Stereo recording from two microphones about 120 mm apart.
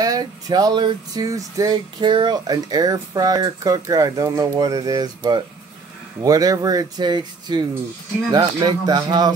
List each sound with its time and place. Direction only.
0.0 s speech: 30° right (ahead or behind)